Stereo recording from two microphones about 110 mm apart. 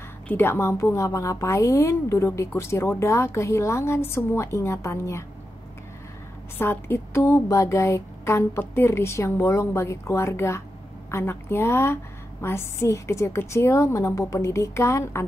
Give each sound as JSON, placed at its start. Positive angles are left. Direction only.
{"t": 0.3, "sound": "a woman's voice", "side_deg": 20}
{"t": 6.6, "sound": "a woman's voice", "side_deg": 20}